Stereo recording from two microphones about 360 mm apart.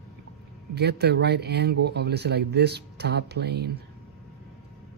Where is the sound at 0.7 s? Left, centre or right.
Right.